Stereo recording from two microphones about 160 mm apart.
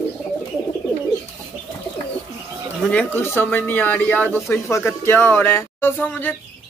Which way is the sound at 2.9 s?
10° left (ahead or behind).